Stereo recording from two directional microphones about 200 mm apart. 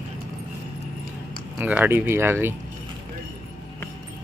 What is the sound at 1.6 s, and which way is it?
Speech, 10° right (ahead or behind).